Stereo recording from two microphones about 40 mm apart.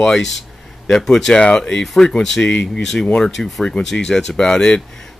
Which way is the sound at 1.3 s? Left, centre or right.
Left.